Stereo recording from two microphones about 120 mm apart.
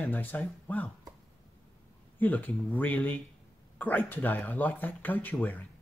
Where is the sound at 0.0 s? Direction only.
15° left (ahead or behind).